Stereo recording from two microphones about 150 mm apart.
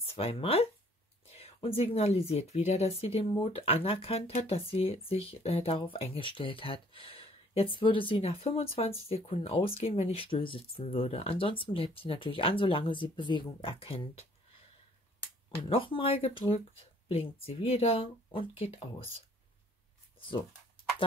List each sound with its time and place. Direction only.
0.1 s speech: 40° left (ahead or behind)
15.7 s speech: 35° left (ahead or behind)